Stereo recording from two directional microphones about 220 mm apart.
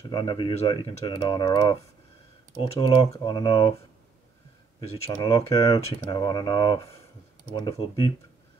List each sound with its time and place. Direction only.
0.0 s speech: 20° left (ahead or behind)
4.7 s speech: 20° left (ahead or behind)